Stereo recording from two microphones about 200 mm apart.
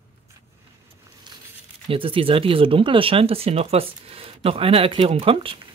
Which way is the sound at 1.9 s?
25° right (ahead or behind).